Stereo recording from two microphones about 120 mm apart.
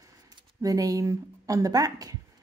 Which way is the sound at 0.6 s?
30° right (ahead or behind).